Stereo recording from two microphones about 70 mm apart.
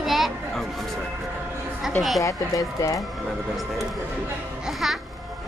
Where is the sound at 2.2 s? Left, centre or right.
Left.